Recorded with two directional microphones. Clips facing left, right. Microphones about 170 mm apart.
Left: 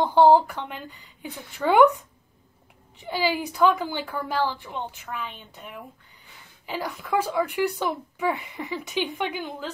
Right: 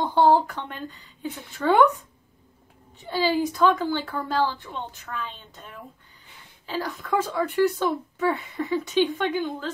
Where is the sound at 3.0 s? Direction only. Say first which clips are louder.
Right 3 dB; 10° left (ahead or behind).